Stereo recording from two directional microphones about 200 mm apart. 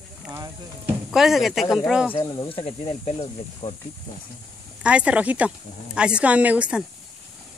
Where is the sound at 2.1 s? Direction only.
20° left (ahead or behind).